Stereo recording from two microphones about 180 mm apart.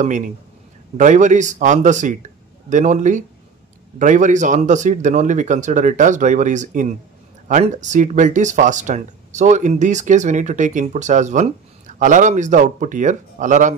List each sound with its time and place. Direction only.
0.9 s speech: 45° right (ahead or behind)